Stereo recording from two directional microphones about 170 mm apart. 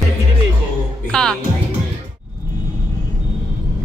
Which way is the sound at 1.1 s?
5° left (ahead or behind).